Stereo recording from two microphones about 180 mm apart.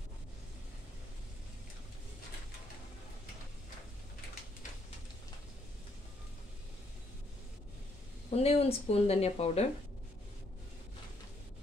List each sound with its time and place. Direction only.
8.3 s speech: 35° left (ahead or behind)